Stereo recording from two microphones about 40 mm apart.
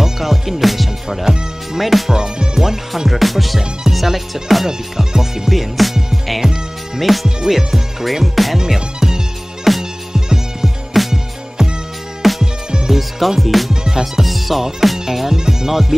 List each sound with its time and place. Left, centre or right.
0.0 s music: centre
1.8 s speech: centre
2.1 s music: centre
8.5 s music: centre
9.7 s music: centre
13.8 s music: centre
14.2 s music: centre